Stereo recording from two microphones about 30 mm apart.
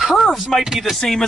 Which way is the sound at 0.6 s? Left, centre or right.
Right.